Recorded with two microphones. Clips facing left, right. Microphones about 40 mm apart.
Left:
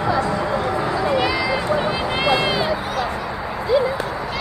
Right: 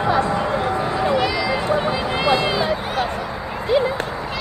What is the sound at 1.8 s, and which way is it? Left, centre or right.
Run, left.